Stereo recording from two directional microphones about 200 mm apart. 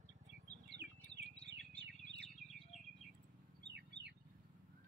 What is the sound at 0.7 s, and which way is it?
Bird, 60° right (ahead or behind).